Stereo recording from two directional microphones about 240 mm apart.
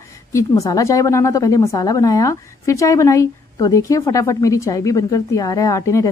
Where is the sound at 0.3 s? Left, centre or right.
Centre.